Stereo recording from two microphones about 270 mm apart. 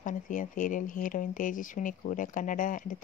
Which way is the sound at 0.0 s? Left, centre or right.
Left.